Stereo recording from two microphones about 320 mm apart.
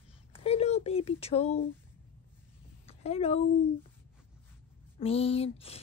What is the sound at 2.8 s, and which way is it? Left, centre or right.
Speech, centre.